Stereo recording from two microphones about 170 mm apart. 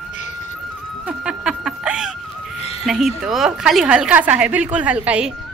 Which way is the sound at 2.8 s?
Centre (ahead or behind).